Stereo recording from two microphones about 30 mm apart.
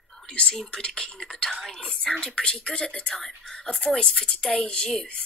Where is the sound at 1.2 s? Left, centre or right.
Left.